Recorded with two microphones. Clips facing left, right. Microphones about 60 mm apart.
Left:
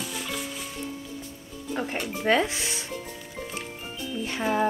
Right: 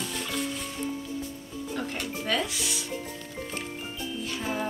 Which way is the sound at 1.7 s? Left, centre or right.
Left.